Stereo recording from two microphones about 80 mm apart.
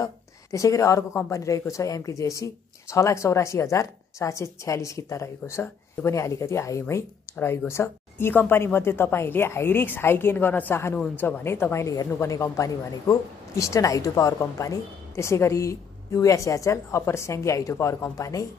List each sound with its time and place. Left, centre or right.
0.0 s a woman's voice: left